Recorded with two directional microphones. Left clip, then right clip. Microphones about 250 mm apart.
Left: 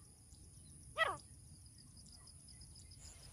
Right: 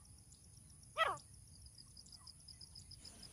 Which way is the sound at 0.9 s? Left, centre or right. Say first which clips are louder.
Even; centre.